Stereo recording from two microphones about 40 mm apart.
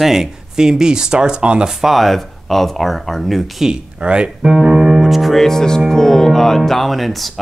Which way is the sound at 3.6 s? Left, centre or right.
Right.